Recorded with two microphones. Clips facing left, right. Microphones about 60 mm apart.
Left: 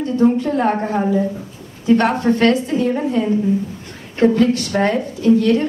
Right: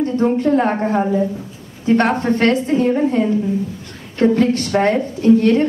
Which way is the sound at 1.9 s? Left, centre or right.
Right.